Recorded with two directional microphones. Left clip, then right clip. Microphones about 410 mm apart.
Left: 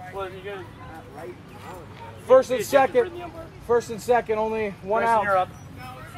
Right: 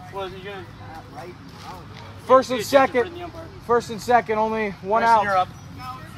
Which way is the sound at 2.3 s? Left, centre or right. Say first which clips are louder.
Right 1 dB; centre.